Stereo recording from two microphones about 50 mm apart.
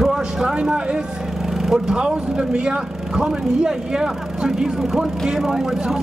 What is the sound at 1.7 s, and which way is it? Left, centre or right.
Speech, centre.